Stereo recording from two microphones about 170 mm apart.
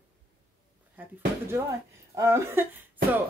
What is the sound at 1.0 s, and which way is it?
Speech, 10° right (ahead or behind).